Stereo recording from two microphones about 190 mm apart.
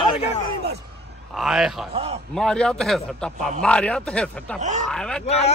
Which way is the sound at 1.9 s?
30° right (ahead or behind).